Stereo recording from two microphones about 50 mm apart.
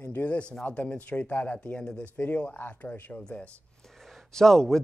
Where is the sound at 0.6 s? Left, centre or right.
Left.